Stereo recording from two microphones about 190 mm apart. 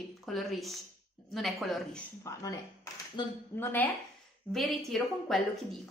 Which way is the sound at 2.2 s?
15° left (ahead or behind).